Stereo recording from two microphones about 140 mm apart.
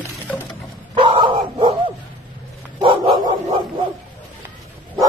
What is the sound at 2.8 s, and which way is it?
Dog, 40° right (ahead or behind).